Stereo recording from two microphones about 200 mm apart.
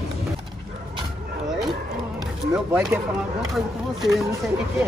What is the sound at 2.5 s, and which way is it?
Speech, 10° right (ahead or behind).